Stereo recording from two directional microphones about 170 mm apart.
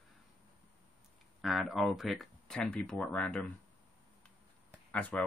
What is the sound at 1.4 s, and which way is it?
Speech, centre (ahead or behind).